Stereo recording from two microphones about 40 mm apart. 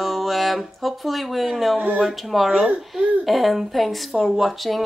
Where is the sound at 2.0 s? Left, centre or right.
Centre.